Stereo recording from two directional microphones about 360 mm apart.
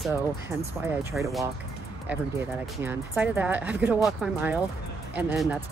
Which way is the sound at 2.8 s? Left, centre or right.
Centre.